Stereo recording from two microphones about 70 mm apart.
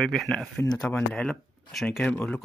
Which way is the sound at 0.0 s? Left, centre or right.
Centre.